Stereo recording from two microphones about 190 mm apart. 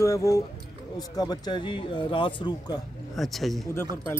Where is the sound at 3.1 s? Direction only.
Centre (ahead or behind).